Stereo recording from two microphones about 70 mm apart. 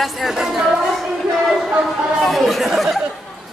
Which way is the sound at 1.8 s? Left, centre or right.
Centre.